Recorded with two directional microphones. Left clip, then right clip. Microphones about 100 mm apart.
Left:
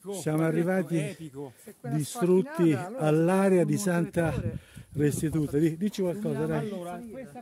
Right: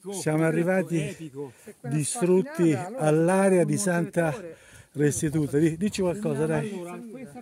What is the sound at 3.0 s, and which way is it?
A man's voice, 30° left (ahead or behind).